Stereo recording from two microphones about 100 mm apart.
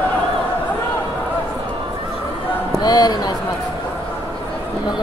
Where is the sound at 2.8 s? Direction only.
40° left (ahead or behind).